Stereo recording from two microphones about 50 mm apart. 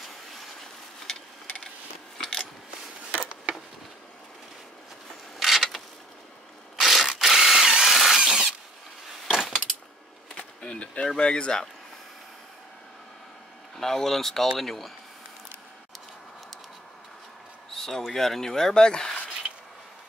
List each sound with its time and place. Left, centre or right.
2.1 s mechanisms: centre
5.4 s creak: centre
6.8 s camera: centre
7.2 s a sound: centre
8.2 s a sound: centre
10.3 s bee: left
11.1 s speech: centre
13.7 s speech: centre
17.7 s speech: centre